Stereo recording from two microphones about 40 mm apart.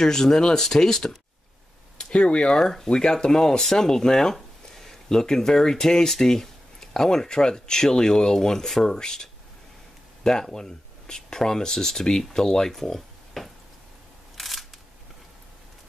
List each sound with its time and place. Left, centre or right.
0.0 s speech: centre
2.5 s speech: centre
14.3 s camera: centre